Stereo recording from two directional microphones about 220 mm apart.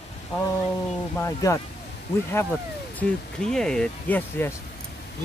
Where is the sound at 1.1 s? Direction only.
15° left (ahead or behind).